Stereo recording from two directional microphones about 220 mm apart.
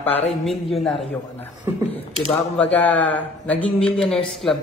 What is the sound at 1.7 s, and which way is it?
Speech, 15° right (ahead or behind).